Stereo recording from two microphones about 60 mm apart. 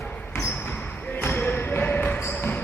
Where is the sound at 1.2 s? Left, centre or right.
Left.